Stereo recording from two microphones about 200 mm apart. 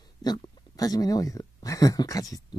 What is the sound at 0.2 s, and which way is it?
Speech, 20° left (ahead or behind).